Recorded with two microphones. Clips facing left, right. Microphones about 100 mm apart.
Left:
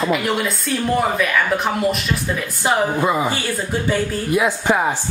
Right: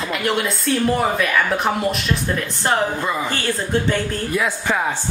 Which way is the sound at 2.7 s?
15° left (ahead or behind).